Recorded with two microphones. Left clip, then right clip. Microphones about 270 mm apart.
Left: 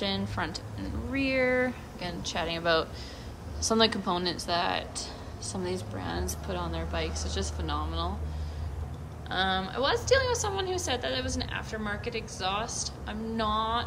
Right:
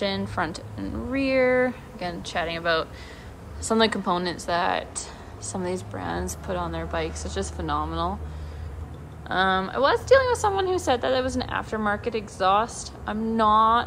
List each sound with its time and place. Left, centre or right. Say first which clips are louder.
0.0 s a woman's voice: right 5 dB; centre
9.3 s a woman's voice: right 6 dB; centre